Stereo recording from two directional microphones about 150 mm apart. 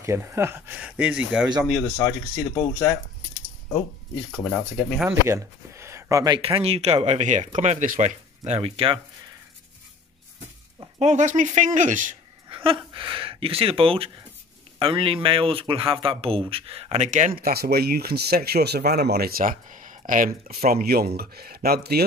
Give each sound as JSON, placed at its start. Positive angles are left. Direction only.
{"t": 0.0, "sound": "speech", "side_deg": -15}
{"t": 1.7, "sound": "speech", "side_deg": 5}
{"t": 4.3, "sound": "speech", "side_deg": 0}
{"t": 5.3, "sound": "speech", "side_deg": -20}
{"t": 6.4, "sound": "speech", "side_deg": -40}
{"t": 11.0, "sound": "speech", "side_deg": -55}
{"t": 12.4, "sound": "speech", "side_deg": -35}
{"t": 17.4, "sound": "speech", "side_deg": -85}